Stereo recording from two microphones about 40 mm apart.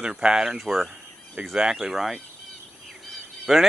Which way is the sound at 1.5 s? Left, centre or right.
Centre.